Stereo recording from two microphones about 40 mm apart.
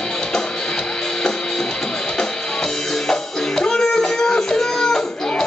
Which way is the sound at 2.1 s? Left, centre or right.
Centre.